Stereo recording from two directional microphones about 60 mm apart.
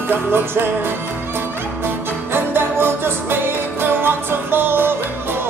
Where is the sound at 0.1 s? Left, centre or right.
Right.